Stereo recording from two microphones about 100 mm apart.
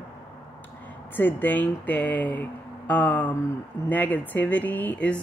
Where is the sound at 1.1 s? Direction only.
20° left (ahead or behind).